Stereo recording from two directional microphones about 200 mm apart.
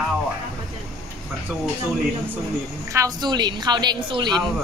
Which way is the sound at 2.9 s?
20° right (ahead or behind).